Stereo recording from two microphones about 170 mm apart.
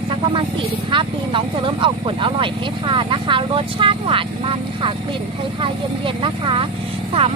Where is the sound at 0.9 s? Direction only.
30° right (ahead or behind).